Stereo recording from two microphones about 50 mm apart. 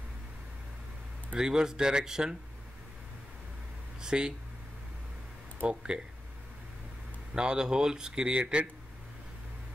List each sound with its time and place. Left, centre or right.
1.3 s a man's voice: centre
4.0 s speech: centre
5.6 s a man's voice: centre
7.3 s a man's voice: centre